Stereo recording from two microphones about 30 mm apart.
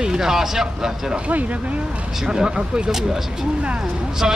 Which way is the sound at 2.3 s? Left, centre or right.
Right.